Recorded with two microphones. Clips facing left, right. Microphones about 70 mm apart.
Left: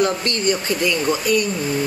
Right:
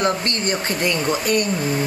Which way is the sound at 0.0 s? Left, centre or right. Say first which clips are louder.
Left 2 dB; right.